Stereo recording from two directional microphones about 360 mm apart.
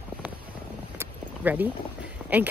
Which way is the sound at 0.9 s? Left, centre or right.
Centre.